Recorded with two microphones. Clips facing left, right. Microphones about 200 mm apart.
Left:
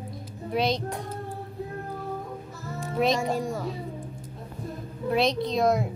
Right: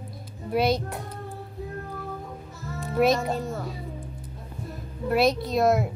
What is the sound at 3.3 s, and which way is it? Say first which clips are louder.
Speech: left 1 dB; 15° left (ahead or behind).